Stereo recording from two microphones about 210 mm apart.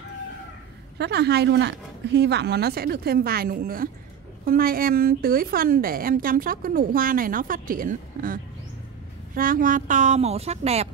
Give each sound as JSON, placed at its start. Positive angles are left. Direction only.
{"t": 0.9, "sound": "a woman's voice", "side_deg": -50}